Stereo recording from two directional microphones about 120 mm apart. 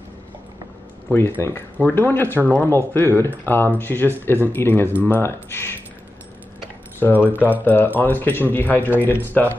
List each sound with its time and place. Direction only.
1.1 s speech: 20° left (ahead or behind)
7.0 s speech: 15° left (ahead or behind)
7.3 s speech: 15° right (ahead or behind)
7.6 s speech: 15° left (ahead or behind)